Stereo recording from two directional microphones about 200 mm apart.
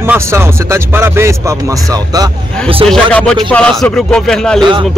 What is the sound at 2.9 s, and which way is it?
Speech, 5° left (ahead or behind).